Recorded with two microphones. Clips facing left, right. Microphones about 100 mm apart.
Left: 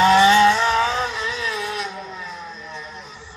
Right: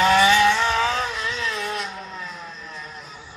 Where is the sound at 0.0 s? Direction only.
25° left (ahead or behind).